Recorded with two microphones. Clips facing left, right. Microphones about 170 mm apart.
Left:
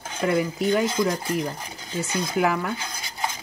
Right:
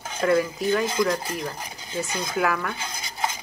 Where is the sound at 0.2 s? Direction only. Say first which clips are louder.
Right 1 dB; 20° left (ahead or behind).